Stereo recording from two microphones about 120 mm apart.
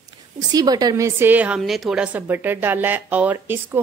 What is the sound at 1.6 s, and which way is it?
A woman's voice, 5° right (ahead or behind).